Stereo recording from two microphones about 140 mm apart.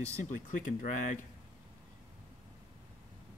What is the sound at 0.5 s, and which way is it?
Speech, 70° left (ahead or behind).